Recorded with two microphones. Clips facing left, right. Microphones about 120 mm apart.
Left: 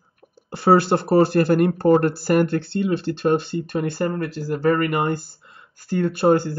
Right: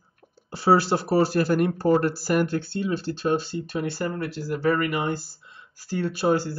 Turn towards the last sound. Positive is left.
turn(degrees=50)  # may be behind; listen again after turning